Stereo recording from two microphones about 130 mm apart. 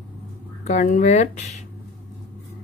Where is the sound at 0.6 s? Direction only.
75° left (ahead or behind).